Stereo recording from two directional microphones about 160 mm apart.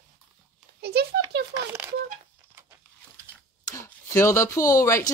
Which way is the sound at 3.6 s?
20° left (ahead or behind).